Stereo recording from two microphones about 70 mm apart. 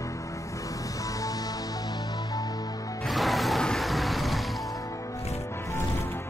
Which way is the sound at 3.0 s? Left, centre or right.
Centre.